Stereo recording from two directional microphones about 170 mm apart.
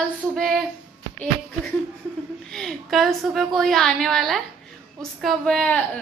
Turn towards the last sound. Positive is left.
turn(degrees=5)  # may be behind; listen again after turning